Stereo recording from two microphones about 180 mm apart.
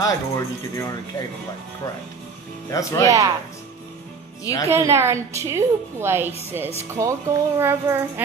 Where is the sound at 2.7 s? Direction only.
15° left (ahead or behind).